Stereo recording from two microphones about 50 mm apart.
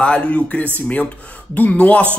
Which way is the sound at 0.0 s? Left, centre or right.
Left.